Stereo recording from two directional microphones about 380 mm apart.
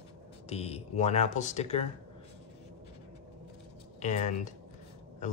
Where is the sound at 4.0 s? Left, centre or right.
Centre.